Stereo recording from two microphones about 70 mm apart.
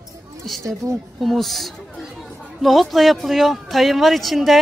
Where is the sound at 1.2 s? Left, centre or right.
Centre.